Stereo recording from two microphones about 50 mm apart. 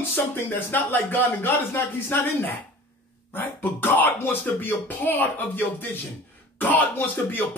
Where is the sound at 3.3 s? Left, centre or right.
Left.